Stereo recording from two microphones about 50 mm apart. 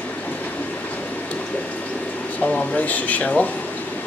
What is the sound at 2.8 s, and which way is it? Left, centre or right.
Speech, left.